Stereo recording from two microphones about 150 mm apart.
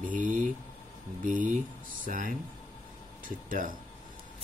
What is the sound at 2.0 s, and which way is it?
Speech, 65° right (ahead or behind).